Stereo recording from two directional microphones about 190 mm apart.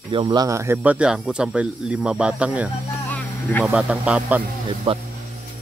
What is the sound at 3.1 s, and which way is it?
Vehicle, 10° left (ahead or behind).